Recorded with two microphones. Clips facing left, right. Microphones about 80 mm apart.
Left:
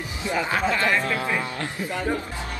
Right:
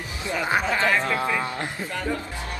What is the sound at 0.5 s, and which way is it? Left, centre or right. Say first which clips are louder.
Speech: right 2 dB; right.